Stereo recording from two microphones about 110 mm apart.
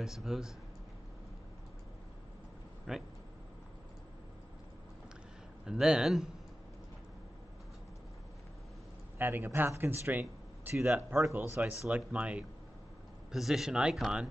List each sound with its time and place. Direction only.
0.0 s speech: 5° right (ahead or behind)
2.9 s speech: 5° right (ahead or behind)
5.7 s speech: 5° right (ahead or behind)
9.2 s speech: 20° right (ahead or behind)